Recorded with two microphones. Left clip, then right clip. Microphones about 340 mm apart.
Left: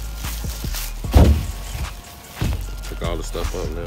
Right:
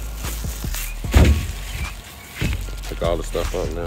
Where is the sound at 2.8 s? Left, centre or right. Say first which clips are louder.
Right 6 dB; centre.